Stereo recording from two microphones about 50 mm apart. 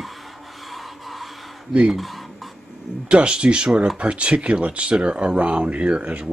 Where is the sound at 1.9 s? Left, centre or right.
Centre.